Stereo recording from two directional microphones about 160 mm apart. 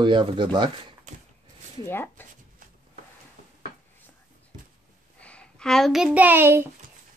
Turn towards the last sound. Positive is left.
turn(degrees=-15)  # may be behind; listen again after turning